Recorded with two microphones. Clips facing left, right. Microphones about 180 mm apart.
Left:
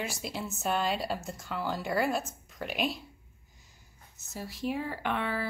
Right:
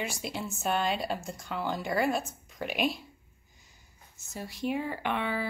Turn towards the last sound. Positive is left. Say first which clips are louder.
# right 1 dB
turn(degrees=0)  # may be behind; listen again after turning